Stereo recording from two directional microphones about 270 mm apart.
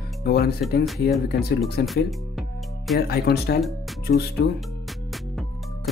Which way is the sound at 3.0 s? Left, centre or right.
Left.